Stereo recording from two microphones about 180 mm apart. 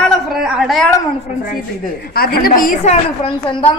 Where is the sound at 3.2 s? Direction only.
30° left (ahead or behind).